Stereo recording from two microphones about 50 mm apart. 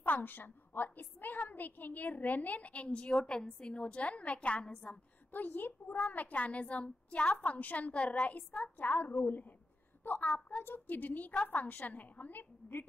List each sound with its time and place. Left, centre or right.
0.0 s a woman's voice: left
5.3 s a woman's voice: left
10.6 s a woman's voice: left